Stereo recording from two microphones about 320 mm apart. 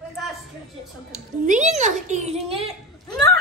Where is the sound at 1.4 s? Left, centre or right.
Right.